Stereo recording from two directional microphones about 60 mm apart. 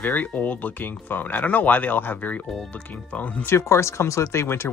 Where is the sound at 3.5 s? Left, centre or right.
Left.